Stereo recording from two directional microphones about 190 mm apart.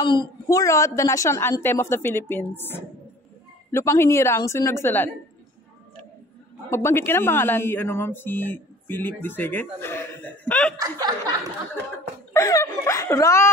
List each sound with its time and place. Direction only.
0.0 s speech: 25° left (ahead or behind)
6.7 s speech: 15° left (ahead or behind)
10.8 s snicker: 20° right (ahead or behind)
12.4 s speech: 15° left (ahead or behind)